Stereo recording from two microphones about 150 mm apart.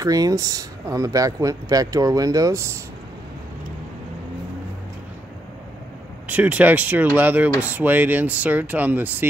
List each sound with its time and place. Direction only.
0.0 s speech: 25° right (ahead or behind)
6.2 s speech: 10° right (ahead or behind)